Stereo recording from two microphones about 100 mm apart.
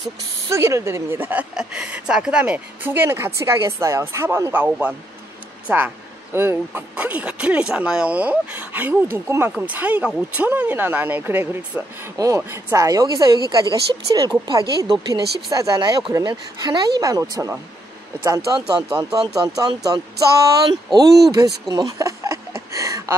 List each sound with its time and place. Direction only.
0.5 s speech: 30° right (ahead or behind)
1.5 s speech: 10° right (ahead or behind)
12.8 s speech: 35° right (ahead or behind)